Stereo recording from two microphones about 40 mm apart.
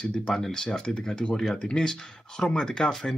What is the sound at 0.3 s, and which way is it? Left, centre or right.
Speech, centre.